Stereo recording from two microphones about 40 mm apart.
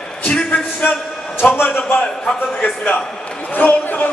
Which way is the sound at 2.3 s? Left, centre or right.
Left.